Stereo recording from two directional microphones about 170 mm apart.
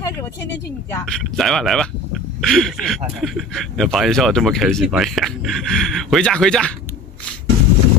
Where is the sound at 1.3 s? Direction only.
Centre (ahead or behind).